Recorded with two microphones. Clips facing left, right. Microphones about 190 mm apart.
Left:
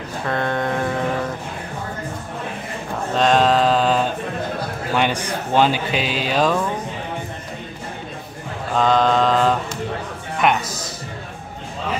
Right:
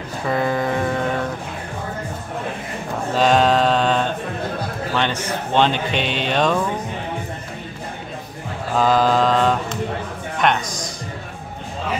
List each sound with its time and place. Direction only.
0.2 s a sound: 5° right (ahead or behind)
3.2 s mantra: centre (ahead or behind)
4.9 s speech: 10° left (ahead or behind)
8.7 s mantra: 5° right (ahead or behind)
10.4 s speech: 5° left (ahead or behind)